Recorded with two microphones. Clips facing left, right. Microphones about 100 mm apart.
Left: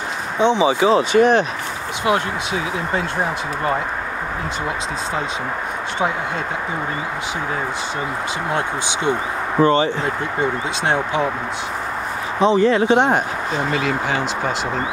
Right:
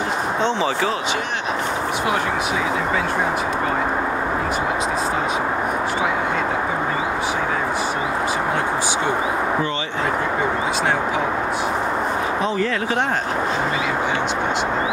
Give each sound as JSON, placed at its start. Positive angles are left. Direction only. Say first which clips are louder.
{"t": 0.4, "sound": "speech", "louder": "left 7 dB", "side_deg": 15}
{"t": 1.1, "sound": "speech", "louder": "left 11 dB", "side_deg": 45}
{"t": 12.4, "sound": "speech", "louder": "left 6 dB", "side_deg": 20}